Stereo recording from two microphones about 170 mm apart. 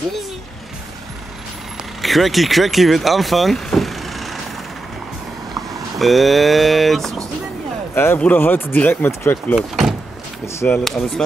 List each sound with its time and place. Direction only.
2.0 s speech: centre (ahead or behind)
5.9 s speech: centre (ahead or behind)
7.9 s speech: 15° left (ahead or behind)
9.6 s speech: 5° right (ahead or behind)
10.4 s speech: 15° left (ahead or behind)
11.2 s speech: 5° left (ahead or behind)